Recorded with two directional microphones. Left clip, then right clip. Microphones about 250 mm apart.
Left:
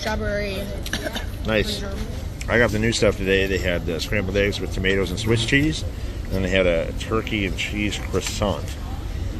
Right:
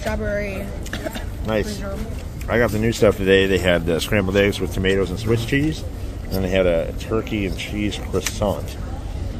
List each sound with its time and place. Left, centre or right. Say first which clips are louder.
0.0 s speech: right 1 dB; right
2.4 s speech: even; centre
3.0 s speech: right 5 dB; right
4.8 s speech: right 1 dB; centre